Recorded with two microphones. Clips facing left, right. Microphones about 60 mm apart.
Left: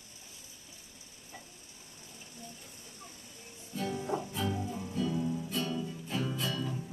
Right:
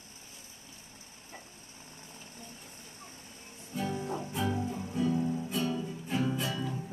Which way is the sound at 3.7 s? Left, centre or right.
Right.